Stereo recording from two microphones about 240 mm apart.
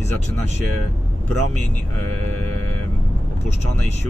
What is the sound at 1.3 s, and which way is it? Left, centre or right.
Speech, right.